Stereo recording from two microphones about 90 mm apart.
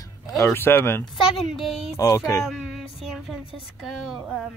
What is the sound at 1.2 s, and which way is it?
Speech, centre (ahead or behind).